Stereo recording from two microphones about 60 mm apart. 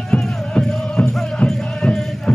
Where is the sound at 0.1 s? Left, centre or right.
Centre.